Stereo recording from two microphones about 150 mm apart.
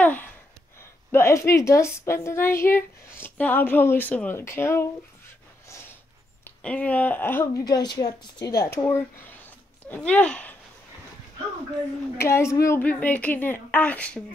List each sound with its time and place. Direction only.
0.0 s gasp: 10° left (ahead or behind)
0.7 s a woman's voice: 15° left (ahead or behind)
6.4 s a woman's voice: 10° left (ahead or behind); by 8.5 s 25° left (ahead or behind)
8.6 s speech: 15° left (ahead or behind)
12.2 s a woman's voice: 20° left (ahead or behind)